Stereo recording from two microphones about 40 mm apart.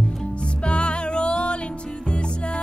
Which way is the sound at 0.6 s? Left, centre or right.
Left.